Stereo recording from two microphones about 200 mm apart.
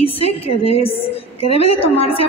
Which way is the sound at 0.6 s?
30° left (ahead or behind).